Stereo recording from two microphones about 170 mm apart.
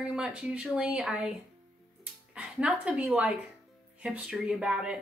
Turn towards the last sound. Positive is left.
turn(degrees=-5)  # may be behind; listen again after turning